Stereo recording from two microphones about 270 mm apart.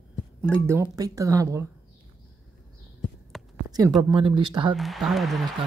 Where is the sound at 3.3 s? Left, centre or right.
Centre.